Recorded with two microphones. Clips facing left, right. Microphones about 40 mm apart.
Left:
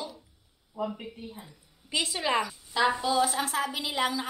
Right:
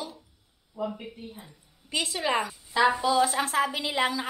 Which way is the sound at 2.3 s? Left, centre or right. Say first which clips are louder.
Even; right.